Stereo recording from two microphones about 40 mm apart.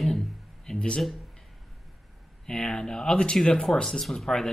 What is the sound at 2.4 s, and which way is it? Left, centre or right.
Speech, centre.